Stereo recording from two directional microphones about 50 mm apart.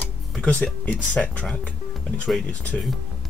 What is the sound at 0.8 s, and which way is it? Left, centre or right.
Speech, left.